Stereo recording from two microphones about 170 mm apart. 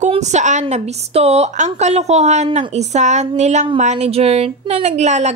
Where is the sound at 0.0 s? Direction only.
40° right (ahead or behind).